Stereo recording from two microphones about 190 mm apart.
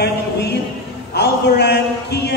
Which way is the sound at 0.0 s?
60° left (ahead or behind).